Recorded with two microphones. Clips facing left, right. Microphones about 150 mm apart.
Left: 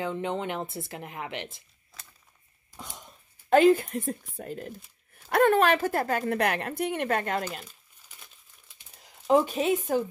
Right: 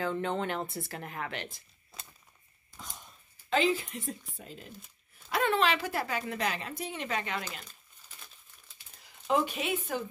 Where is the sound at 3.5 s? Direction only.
55° left (ahead or behind).